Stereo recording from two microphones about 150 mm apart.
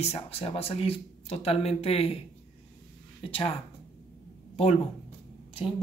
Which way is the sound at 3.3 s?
40° left (ahead or behind).